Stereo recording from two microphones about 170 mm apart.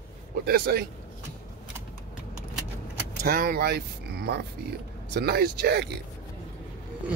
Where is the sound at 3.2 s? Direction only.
60° right (ahead or behind).